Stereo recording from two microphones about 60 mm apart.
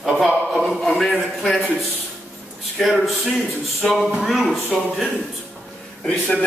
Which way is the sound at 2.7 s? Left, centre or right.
Centre.